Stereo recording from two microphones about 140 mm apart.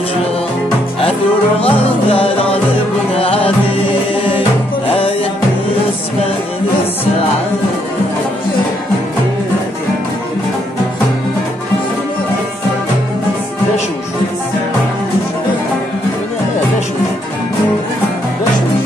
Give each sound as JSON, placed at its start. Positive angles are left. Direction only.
{"t": 1.6, "sound": "music", "side_deg": 45}